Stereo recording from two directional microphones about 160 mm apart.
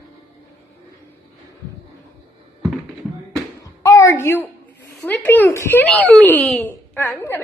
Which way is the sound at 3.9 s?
15° left (ahead or behind).